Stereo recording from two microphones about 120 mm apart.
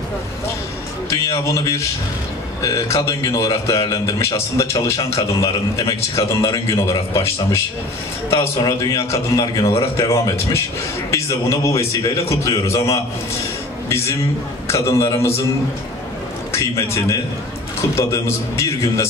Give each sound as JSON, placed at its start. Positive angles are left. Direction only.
{"t": 1.1, "sound": "a man's voice", "side_deg": 30}
{"t": 16.5, "sound": "a man's voice", "side_deg": 25}